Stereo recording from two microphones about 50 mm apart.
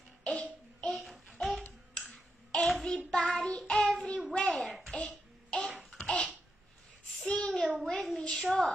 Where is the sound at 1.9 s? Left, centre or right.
Left.